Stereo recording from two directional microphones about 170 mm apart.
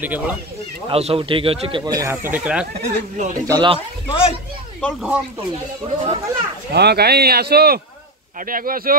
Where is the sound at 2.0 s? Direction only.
10° right (ahead or behind).